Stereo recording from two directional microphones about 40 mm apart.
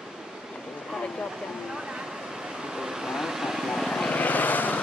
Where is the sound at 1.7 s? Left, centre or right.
Centre.